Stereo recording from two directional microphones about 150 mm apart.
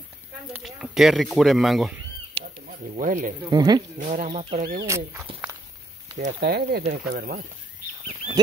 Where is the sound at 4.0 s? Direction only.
55° right (ahead or behind).